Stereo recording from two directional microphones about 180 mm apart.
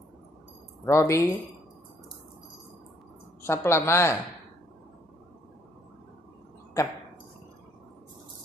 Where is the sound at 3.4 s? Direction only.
15° left (ahead or behind).